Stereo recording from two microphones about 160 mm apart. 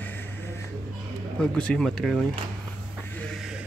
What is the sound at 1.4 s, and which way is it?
Speech, 5° left (ahead or behind).